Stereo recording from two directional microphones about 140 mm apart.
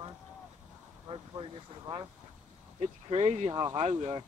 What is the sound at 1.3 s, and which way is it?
Speech, 35° right (ahead or behind).